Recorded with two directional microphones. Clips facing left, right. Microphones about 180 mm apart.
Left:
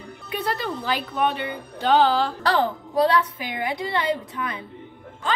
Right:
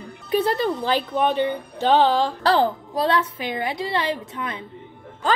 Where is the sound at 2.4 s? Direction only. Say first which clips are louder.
Right 3 dB; 30° right (ahead or behind).